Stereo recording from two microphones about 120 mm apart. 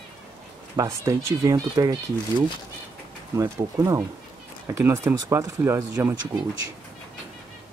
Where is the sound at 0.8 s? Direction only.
25° right (ahead or behind).